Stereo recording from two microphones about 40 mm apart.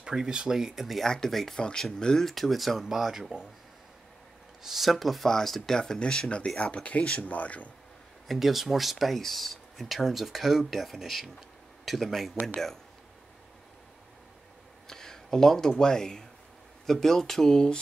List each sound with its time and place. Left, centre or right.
0.0 s speech: centre
1.0 s speech: centre
1.6 s speech: left
2.2 s speech: centre
2.8 s speech: centre
4.6 s speech: centre
5.8 s speech: left
8.3 s speech: centre
14.9 s a sound: centre
15.8 s speech: centre